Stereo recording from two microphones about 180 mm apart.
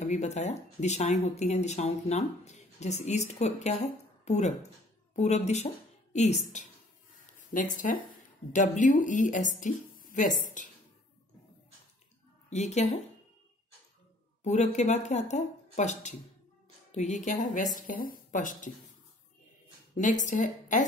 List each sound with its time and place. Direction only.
0.0 s a woman's voice: 40° left (ahead or behind)
12.4 s a woman's voice: 40° left (ahead or behind)
14.4 s a woman's voice: 40° left (ahead or behind)
20.0 s a woman's voice: 45° left (ahead or behind)